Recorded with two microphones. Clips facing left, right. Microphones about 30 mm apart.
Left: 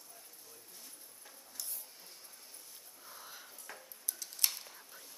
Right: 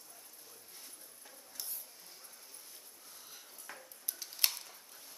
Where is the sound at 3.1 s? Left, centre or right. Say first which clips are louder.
Left 5 dB; centre.